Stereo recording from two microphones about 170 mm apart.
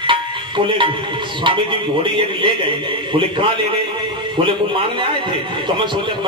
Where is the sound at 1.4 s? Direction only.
30° right (ahead or behind).